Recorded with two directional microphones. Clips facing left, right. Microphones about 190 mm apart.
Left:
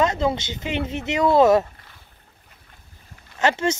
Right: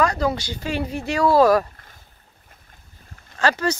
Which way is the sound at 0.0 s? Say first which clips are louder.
Even; 25° left (ahead or behind).